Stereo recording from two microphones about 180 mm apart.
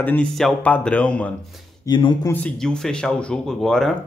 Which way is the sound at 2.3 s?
5° left (ahead or behind).